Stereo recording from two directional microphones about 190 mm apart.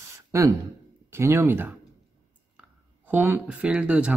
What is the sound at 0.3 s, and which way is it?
Speech, 15° right (ahead or behind).